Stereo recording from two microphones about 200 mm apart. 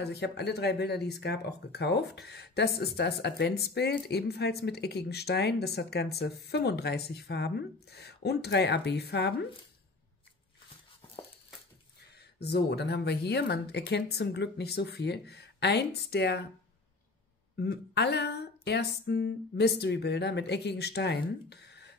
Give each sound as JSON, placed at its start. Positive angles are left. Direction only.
{"t": 0.0, "sound": "speech", "side_deg": 55}
{"t": 12.2, "sound": "speech", "side_deg": 55}
{"t": 17.6, "sound": "speech", "side_deg": 55}